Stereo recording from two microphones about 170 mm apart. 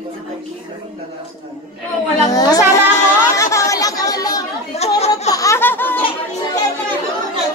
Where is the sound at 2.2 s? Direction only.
20° left (ahead or behind).